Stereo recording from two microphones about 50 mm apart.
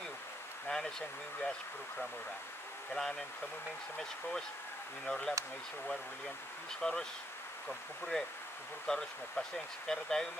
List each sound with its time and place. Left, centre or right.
0.7 s speech: centre
2.9 s speech: centre
6.8 s speech: centre
8.9 s speech: centre